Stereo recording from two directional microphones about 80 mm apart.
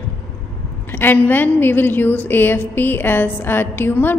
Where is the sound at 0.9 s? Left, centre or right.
Left.